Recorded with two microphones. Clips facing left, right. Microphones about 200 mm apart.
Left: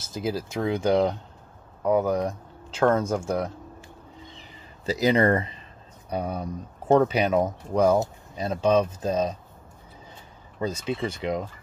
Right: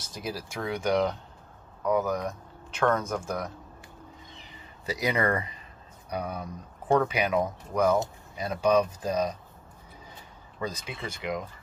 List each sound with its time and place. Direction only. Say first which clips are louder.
0.0 s speech: left 7 dB; 25° left (ahead or behind)
4.8 s speech: left 6 dB; 25° left (ahead or behind)
10.6 s speech: left 7 dB; 25° left (ahead or behind)